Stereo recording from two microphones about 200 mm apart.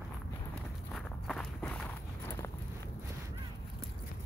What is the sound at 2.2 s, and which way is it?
Walk, 15° left (ahead or behind).